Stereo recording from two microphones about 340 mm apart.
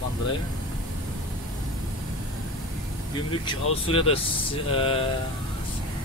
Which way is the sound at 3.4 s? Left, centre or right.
Centre.